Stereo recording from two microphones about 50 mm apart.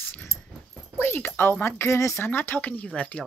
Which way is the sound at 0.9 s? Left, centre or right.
Left.